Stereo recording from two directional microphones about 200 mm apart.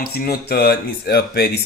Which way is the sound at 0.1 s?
50° left (ahead or behind).